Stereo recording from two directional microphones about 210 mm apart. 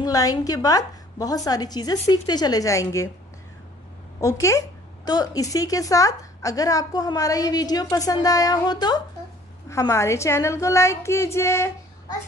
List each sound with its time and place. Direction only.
0.0 s speech: 15° left (ahead or behind)
4.2 s speech: 15° left (ahead or behind)